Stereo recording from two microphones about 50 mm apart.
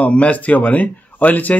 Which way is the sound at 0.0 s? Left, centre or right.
Left.